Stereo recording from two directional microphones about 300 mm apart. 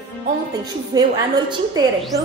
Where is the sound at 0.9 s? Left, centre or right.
Centre.